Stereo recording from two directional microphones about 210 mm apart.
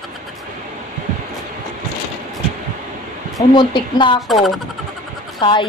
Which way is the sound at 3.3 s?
20° left (ahead or behind).